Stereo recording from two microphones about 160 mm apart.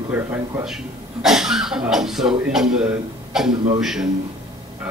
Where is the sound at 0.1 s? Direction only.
10° right (ahead or behind).